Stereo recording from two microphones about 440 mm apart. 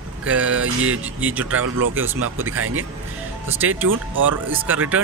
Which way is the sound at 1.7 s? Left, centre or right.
Right.